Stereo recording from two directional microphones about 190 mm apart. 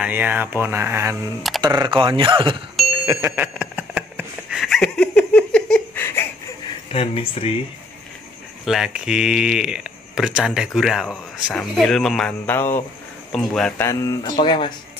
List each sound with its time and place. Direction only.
0.0 s speech: 10° right (ahead or behind); by 2.6 s 25° right (ahead or behind)
3.1 s a sound: 15° right (ahead or behind); by 6.2 s 10° left (ahead or behind)
6.9 s speech: 30° left (ahead or behind)
8.6 s speech: centre (ahead or behind); by 14.1 s 15° left (ahead or behind)
14.3 s speech: 25° left (ahead or behind)